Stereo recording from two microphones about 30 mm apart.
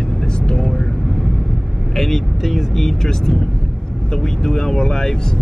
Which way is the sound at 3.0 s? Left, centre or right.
Centre.